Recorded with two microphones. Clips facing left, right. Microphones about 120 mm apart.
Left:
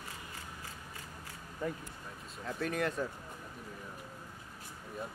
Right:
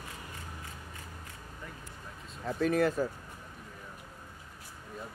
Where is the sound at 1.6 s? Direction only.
40° left (ahead or behind).